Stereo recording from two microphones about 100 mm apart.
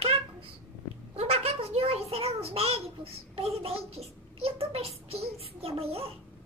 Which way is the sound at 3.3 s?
75° right (ahead or behind).